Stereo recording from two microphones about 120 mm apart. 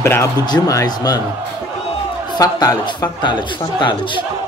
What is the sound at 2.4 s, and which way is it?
Speech, 30° left (ahead or behind).